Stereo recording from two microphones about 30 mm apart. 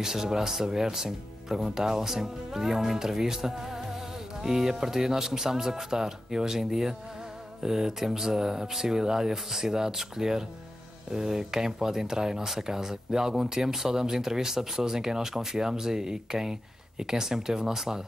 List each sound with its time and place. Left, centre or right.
0.0 s speech: centre